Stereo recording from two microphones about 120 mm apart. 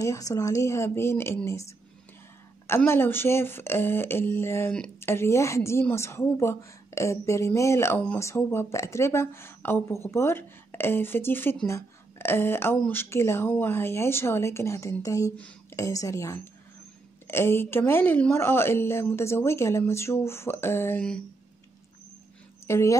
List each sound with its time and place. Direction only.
0.0 s a woman's voice: 25° left (ahead or behind)
2.9 s a woman's voice: 20° left (ahead or behind)
22.7 s a woman's voice: 25° left (ahead or behind)